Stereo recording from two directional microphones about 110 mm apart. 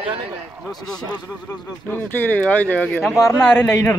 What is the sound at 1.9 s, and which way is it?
Speech, 20° left (ahead or behind).